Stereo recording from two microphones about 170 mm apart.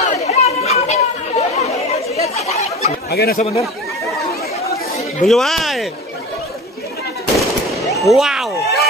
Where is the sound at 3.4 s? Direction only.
35° left (ahead or behind).